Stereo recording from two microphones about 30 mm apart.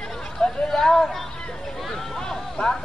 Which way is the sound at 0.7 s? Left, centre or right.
Centre.